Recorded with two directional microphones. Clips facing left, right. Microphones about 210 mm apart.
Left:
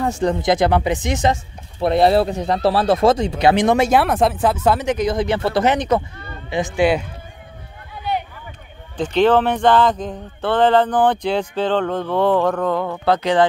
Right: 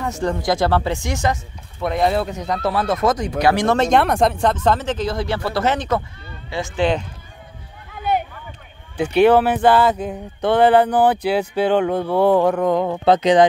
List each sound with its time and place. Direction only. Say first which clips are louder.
0.2 s speech: left 2 dB; 20° left (ahead or behind)
8.9 s speech: right 2 dB; 10° right (ahead or behind)